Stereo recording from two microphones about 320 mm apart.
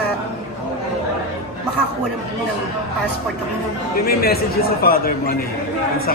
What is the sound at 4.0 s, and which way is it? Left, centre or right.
A man's voice, left.